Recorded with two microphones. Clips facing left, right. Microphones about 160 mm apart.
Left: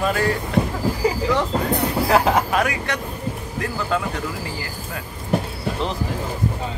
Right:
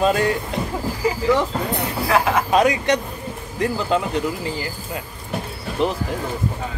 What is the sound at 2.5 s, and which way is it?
Speech, 20° right (ahead or behind).